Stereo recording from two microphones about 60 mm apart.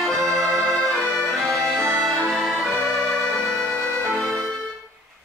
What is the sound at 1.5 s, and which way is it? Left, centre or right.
Accordion, right.